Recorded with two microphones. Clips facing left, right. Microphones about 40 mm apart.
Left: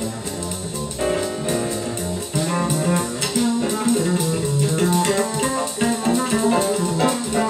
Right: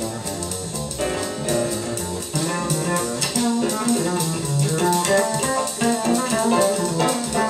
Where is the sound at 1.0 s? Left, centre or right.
Centre.